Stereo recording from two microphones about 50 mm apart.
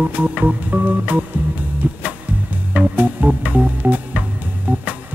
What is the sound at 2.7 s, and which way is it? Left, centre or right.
Music, right.